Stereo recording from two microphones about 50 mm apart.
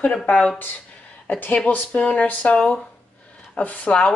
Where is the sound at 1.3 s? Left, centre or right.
Left.